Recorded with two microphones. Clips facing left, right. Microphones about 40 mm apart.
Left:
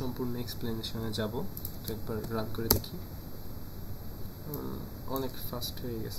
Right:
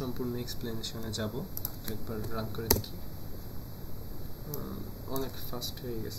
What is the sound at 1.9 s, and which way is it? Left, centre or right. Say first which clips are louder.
Speech: left 2 dB; right.